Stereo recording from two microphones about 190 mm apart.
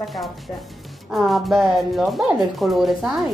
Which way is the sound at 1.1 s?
Centre (ahead or behind).